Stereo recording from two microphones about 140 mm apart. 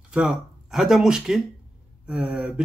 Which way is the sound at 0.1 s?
5° right (ahead or behind).